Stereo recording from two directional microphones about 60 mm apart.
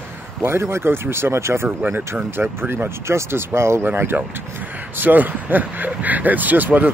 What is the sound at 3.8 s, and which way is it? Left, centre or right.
Speech, right.